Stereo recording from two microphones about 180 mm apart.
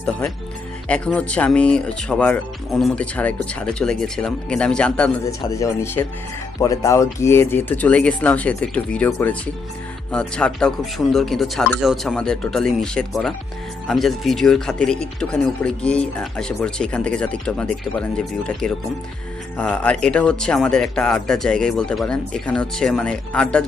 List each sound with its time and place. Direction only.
0.8 s speech: 5° left (ahead or behind)
5.5 s speech: 15° left (ahead or behind)